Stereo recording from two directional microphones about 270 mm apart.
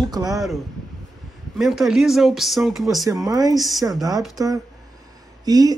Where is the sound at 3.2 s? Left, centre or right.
Centre.